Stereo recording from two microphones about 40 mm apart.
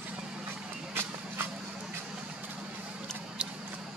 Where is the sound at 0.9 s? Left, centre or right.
Right.